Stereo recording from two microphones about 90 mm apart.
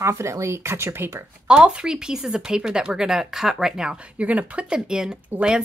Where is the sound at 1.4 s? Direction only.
10° right (ahead or behind).